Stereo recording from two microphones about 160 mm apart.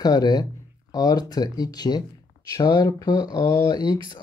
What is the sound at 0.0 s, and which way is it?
Speech, 25° left (ahead or behind).